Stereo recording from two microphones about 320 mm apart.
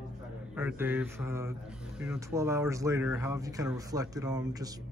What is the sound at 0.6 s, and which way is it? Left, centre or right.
Speech, centre.